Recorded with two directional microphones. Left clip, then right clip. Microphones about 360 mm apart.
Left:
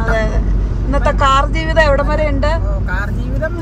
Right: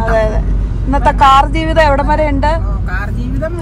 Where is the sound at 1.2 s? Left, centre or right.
Centre.